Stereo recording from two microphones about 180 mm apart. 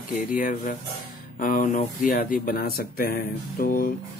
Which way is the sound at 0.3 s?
50° left (ahead or behind).